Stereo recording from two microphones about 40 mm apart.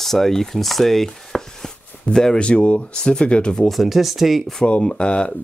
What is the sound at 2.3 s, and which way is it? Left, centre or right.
Speech, left.